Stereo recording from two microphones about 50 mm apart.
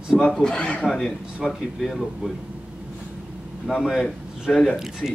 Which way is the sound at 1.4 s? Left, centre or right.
Centre.